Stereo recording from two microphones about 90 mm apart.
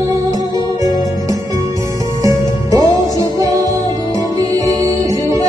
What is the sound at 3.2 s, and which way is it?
Music, 45° right (ahead or behind).